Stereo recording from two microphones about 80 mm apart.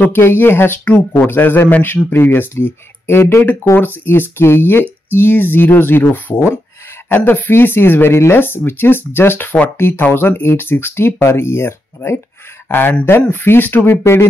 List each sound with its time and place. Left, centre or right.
0.0 s speech: left